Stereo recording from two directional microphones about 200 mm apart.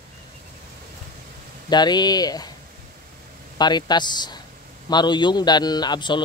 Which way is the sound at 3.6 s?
20° left (ahead or behind).